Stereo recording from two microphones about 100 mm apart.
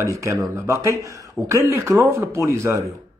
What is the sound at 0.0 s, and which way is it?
Speech, 30° right (ahead or behind).